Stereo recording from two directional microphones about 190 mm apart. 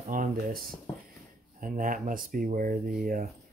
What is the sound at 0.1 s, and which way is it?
Speech, 50° right (ahead or behind).